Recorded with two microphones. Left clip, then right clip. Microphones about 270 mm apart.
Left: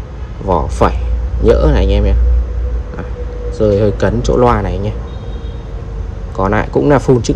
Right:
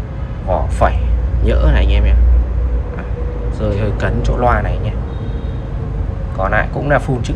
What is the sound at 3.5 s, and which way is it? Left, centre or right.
Speech, centre.